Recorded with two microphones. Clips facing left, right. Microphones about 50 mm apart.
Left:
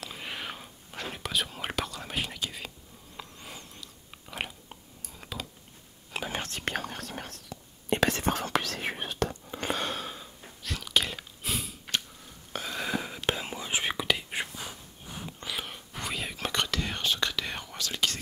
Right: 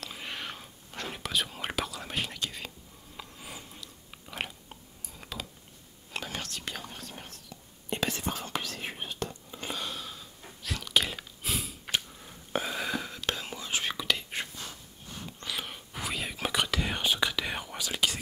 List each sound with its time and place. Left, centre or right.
0.0 s whispering: centre
3.2 s chewing: centre
6.2 s whispering: left
6.8 s whispering: left
10.4 s chewing: centre
11.9 s a sound: centre
12.8 s whispering: centre
15.4 s whispering: centre